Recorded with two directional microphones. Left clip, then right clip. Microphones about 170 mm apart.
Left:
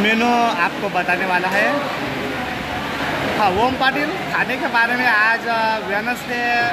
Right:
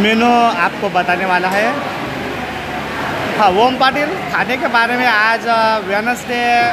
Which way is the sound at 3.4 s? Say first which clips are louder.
Right 6 dB; 25° right (ahead or behind).